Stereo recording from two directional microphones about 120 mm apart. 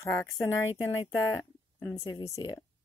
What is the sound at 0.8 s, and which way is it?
A woman's voice, 30° left (ahead or behind).